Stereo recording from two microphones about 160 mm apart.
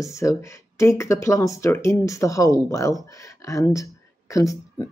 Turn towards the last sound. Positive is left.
turn(degrees=20)  # may be behind; listen again after turning